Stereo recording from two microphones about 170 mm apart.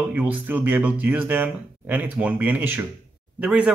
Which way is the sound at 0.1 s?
10° right (ahead or behind).